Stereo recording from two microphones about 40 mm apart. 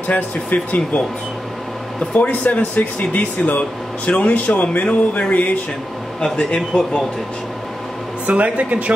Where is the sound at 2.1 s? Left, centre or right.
Left.